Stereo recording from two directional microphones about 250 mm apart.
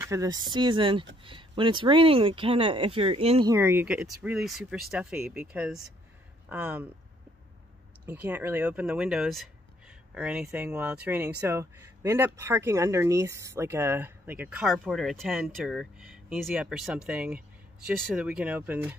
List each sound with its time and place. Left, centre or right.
0.0 s speech: centre
3.5 s speech: centre
8.1 s speech: centre